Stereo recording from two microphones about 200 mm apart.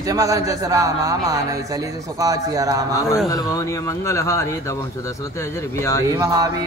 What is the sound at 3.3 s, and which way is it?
Speech, 15° left (ahead or behind).